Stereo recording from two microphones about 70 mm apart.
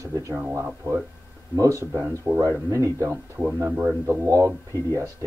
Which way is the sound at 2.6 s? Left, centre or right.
Right.